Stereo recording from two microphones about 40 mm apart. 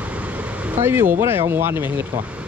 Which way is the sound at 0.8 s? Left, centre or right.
Right.